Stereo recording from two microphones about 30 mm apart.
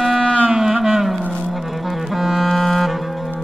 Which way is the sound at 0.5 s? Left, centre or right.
Centre.